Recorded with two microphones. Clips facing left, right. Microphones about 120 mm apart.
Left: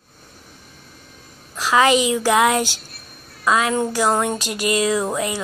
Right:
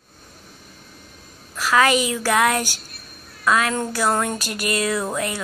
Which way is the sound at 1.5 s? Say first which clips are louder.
Left 2 dB; 20° left (ahead or behind).